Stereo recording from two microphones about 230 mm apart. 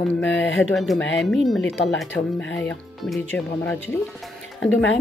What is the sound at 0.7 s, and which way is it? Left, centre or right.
Speech, centre.